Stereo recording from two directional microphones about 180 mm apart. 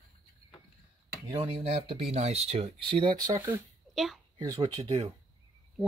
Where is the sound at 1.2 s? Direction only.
30° right (ahead or behind).